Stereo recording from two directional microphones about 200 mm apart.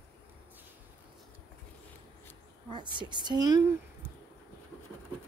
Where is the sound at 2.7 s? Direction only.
25° right (ahead or behind).